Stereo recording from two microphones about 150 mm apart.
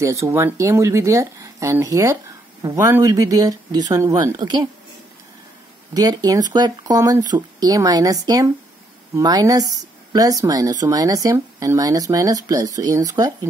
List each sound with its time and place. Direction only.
0.0 s speech: 20° right (ahead or behind)
5.9 s speech: 25° right (ahead or behind)